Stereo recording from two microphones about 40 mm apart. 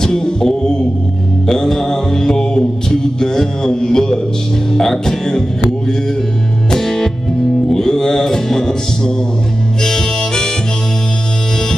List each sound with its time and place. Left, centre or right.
0.0 s music: centre
1.5 s mantra: centre
4.7 s music: centre
6.7 s music: centre